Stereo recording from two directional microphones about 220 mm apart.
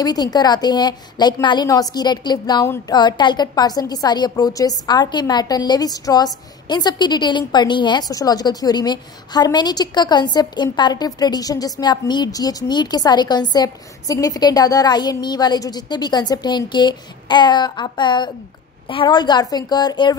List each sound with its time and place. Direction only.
0.0 s a woman's voice: 20° left (ahead or behind)